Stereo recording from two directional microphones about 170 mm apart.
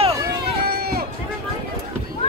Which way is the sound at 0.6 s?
65° right (ahead or behind).